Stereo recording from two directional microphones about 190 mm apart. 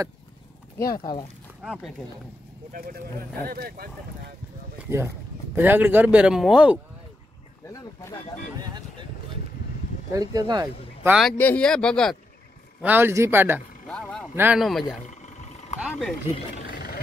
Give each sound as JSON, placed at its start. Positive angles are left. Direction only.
{"t": 1.6, "sound": "speech", "side_deg": 0}
{"t": 2.7, "sound": "speech", "side_deg": -50}
{"t": 4.8, "sound": "speech", "side_deg": -15}
{"t": 7.6, "sound": "speech", "side_deg": 15}
{"t": 8.5, "sound": "speech", "side_deg": -20}
{"t": 10.1, "sound": "speech", "side_deg": -20}
{"t": 11.1, "sound": "speech", "side_deg": 0}
{"t": 12.8, "sound": "speech", "side_deg": -10}
{"t": 13.8, "sound": "vehicle", "side_deg": 5}
{"t": 14.3, "sound": "speech", "side_deg": -10}
{"t": 14.6, "sound": "speech", "side_deg": 0}
{"t": 15.0, "sound": "a sound", "side_deg": 40}
{"t": 15.8, "sound": "speech", "side_deg": 5}
{"t": 16.6, "sound": "vehicle", "side_deg": 55}